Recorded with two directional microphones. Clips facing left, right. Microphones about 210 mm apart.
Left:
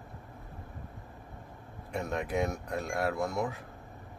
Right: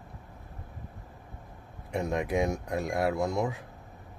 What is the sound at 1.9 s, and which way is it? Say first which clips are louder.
Speech: right 4 dB; 15° right (ahead or behind).